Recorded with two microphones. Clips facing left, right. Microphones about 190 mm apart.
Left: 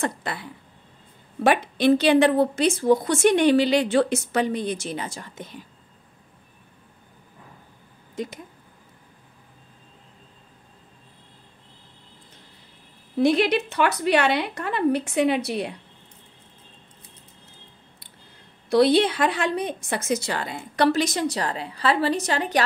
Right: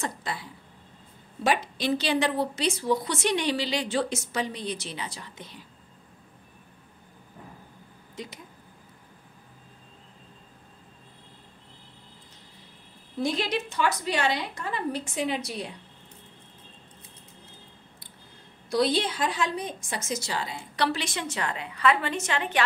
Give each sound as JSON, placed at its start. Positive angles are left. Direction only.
{"t": 0.0, "sound": "a woman's voice", "side_deg": 60}
{"t": 8.2, "sound": "a woman's voice", "side_deg": 50}
{"t": 13.2, "sound": "a woman's voice", "side_deg": 65}
{"t": 18.7, "sound": "a woman's voice", "side_deg": 65}